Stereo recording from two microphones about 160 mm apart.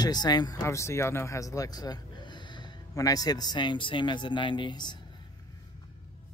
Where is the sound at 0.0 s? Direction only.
25° left (ahead or behind).